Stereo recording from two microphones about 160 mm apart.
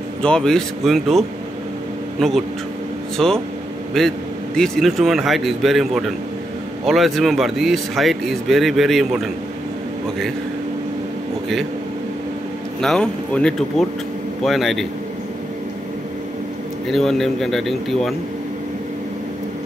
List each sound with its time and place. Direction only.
0.2 s speech: 5° left (ahead or behind)
12.8 s speech: 5° left (ahead or behind)
16.8 s speech: centre (ahead or behind)